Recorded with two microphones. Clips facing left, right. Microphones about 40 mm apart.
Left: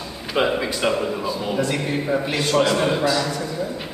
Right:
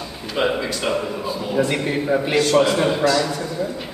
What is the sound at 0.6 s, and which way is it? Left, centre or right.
Speech, centre.